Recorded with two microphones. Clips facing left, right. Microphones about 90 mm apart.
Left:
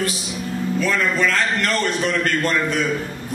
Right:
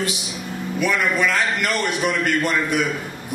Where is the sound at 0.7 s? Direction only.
10° right (ahead or behind).